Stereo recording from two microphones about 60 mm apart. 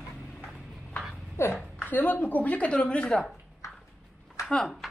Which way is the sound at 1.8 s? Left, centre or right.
Left.